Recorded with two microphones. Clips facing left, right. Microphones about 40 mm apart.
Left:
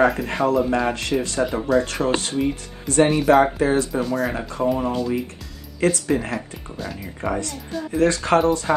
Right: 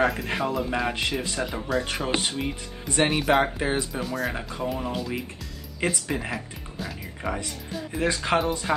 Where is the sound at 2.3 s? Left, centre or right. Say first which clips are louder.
Left 7 dB; centre.